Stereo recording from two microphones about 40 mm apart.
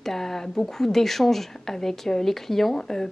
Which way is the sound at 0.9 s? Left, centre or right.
Centre.